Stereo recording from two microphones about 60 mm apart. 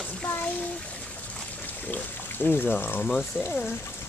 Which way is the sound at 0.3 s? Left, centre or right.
Left.